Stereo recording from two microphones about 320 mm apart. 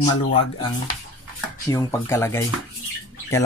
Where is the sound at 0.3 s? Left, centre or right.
Centre.